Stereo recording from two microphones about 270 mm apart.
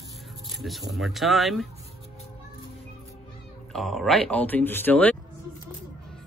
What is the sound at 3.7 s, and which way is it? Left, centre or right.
A woman's voice, centre.